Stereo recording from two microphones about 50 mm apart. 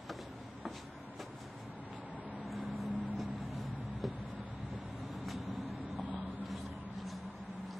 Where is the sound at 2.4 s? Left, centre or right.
Centre.